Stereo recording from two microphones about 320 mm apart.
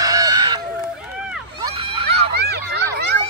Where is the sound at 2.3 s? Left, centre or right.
Right.